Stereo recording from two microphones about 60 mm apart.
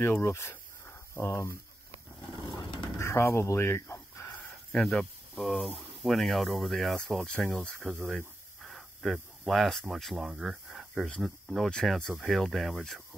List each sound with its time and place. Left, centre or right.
0.0 s speech: left
3.0 s a sound: left
4.7 s speech: centre
7.2 s speech: centre
7.8 s speech: centre
8.6 s a sound: centre
9.5 s speech: centre
10.2 s speech: centre